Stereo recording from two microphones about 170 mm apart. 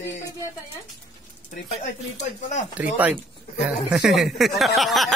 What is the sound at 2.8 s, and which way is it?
A man's voice, 10° right (ahead or behind).